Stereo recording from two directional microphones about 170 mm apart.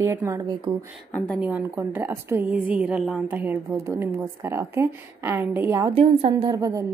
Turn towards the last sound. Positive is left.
turn(degrees=-20)  # may be behind; listen again after turning